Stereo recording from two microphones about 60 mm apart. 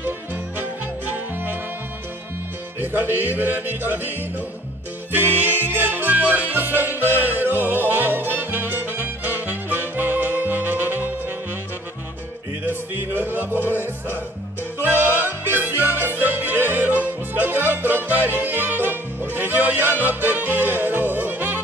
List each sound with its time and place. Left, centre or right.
0.0 s music: right
2.8 s music: right
12.6 s music: right